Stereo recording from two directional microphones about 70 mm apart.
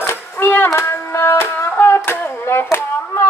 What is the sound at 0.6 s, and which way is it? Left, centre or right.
Music, left.